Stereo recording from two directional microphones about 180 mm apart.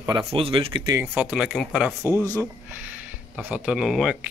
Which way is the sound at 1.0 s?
10° right (ahead or behind).